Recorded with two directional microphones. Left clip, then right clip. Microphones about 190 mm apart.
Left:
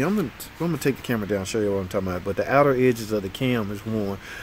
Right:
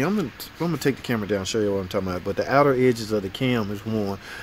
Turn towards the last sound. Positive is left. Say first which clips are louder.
# right 1 dB
turn(degrees=-10)  # may be behind; listen again after turning